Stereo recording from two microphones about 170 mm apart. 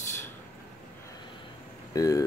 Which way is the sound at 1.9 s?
20° left (ahead or behind).